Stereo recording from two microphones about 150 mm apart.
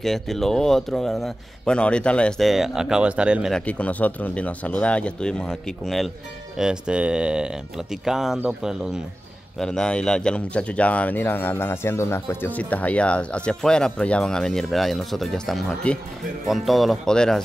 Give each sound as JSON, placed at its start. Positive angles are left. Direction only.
{"t": 0.0, "sound": "speech", "side_deg": 0}
{"t": 3.5, "sound": "speech", "side_deg": 10}